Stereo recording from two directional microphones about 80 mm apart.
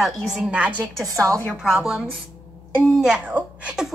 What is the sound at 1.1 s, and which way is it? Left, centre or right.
Speech, right.